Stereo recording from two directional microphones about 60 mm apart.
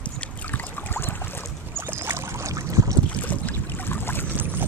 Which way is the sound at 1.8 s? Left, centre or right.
Right.